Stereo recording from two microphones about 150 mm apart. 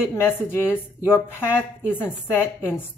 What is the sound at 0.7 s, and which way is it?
A woman's voice, 15° left (ahead or behind).